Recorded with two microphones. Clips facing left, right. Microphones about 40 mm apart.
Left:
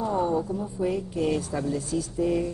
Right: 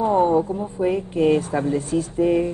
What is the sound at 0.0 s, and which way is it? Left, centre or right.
Speech, right.